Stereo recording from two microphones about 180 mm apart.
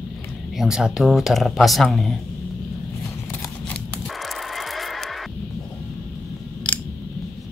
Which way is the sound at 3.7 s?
Centre (ahead or behind).